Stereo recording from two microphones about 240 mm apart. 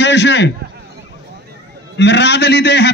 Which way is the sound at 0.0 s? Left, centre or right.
Left.